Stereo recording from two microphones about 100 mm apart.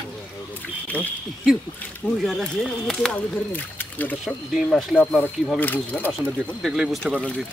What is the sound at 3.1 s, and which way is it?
Speech, 15° left (ahead or behind).